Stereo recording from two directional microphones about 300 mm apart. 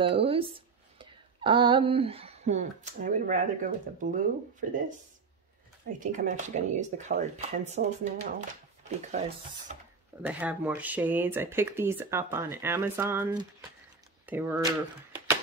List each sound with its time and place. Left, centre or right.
0.0 s speech: centre
5.9 s speech: right
10.2 s speech: centre